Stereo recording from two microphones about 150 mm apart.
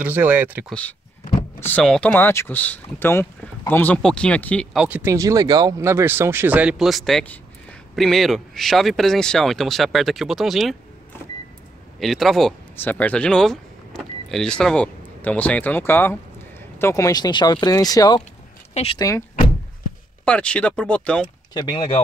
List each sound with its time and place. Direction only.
0.0 s speech: 10° right (ahead or behind)
0.7 s speech: 10° left (ahead or behind)
4.7 s speech: 10° right (ahead or behind)
12.0 s speech: centre (ahead or behind)
12.7 s speech: 10° left (ahead or behind)
18.7 s speech: 45° left (ahead or behind)
18.9 s speech: 20° left (ahead or behind)
20.2 s speech: 5° left (ahead or behind)
21.5 s speech: 30° left (ahead or behind)